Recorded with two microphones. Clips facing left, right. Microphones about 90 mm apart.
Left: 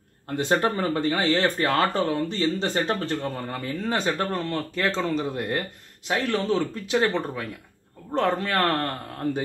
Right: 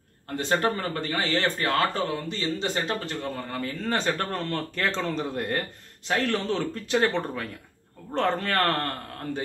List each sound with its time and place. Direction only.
0.4 s speech: 20° left (ahead or behind)
3.8 s a man's voice: 10° left (ahead or behind)